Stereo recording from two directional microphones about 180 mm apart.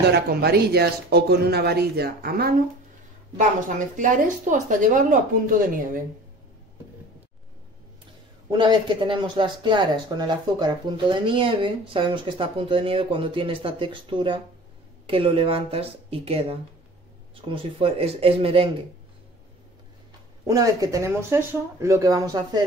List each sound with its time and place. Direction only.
0.1 s speech: 65° right (ahead or behind)
3.3 s a woman's voice: 45° right (ahead or behind)
8.5 s speech: 25° right (ahead or behind)
20.4 s speech: 20° right (ahead or behind)